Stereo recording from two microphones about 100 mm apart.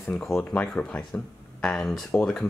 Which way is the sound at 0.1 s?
5° left (ahead or behind).